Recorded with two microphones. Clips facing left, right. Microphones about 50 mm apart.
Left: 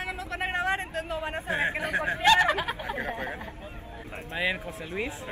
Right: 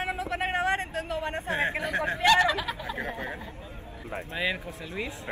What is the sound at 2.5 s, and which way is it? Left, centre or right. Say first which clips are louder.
Speech: left 2 dB; left.